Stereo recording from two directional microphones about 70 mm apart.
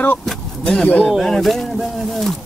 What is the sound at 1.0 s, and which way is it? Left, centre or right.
Speech, centre.